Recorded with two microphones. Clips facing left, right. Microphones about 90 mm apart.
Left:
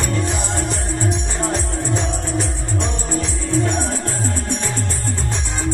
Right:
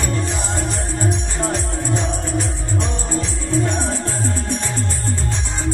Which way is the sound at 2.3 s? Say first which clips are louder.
Even; 40° right (ahead or behind).